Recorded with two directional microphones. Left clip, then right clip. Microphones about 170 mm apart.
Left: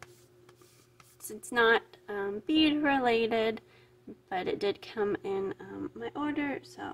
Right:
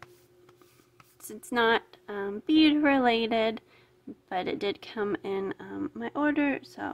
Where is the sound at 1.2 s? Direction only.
20° right (ahead or behind).